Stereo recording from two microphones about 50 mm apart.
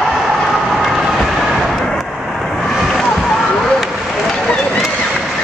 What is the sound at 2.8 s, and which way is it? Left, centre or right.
Vehicle, centre.